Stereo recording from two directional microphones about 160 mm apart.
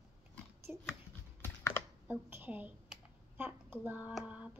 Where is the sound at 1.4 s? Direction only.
15° left (ahead or behind).